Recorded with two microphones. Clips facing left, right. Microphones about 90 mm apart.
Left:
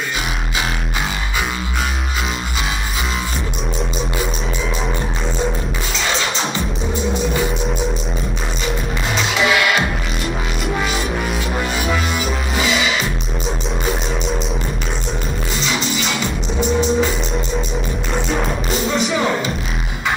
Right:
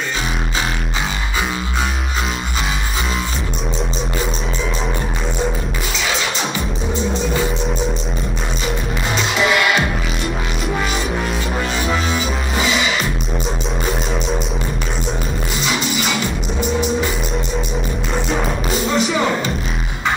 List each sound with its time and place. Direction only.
5.9 s music: 5° right (ahead or behind)
8.6 s music: centre (ahead or behind)
15.5 s music: 5° right (ahead or behind)